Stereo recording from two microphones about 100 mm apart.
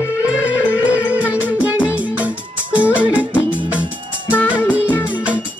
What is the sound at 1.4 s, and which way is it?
Music, 15° right (ahead or behind).